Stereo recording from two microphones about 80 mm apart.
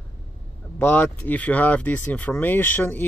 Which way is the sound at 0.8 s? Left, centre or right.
Left.